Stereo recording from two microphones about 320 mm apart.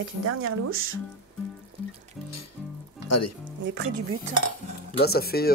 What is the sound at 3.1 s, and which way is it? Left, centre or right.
Speech, left.